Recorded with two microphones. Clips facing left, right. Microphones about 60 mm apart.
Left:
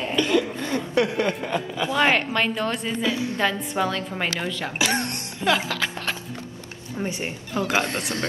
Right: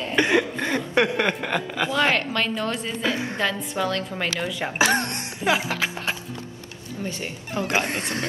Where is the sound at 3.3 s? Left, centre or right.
Centre.